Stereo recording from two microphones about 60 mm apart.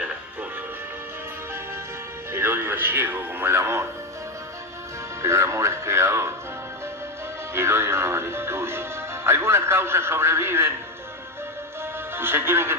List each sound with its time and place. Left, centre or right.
2.3 s speech: right
5.2 s speech: right
7.5 s speech: right
12.2 s a man's voice: right